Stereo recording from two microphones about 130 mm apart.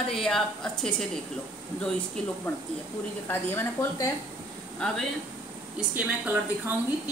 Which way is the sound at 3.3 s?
15° left (ahead or behind).